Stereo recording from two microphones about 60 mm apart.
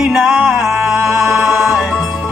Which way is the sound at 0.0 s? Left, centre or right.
Centre.